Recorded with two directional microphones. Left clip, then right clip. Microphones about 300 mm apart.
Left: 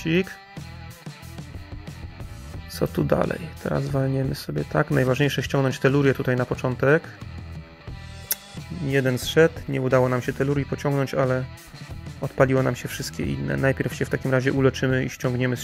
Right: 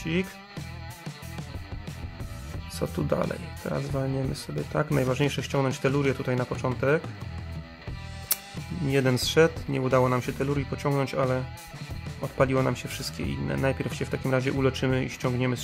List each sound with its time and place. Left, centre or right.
0.0 s speech: centre
2.7 s speech: centre
8.8 s speech: centre